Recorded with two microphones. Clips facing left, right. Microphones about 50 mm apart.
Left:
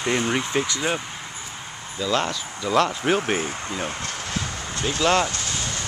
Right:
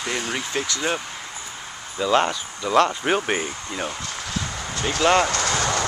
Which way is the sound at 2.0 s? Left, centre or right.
Right.